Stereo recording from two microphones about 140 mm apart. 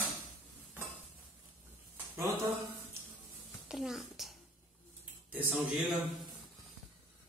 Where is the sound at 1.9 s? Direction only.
20° right (ahead or behind).